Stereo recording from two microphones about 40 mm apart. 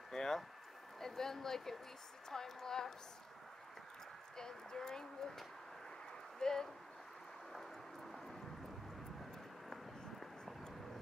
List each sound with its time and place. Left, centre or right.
0.1 s a sound: centre
0.9 s speech: centre
4.4 s speech: centre
6.4 s speech: centre
10.2 s vehicle: centre